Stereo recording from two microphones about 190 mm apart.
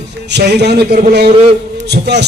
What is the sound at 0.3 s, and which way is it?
A man's voice, 60° right (ahead or behind).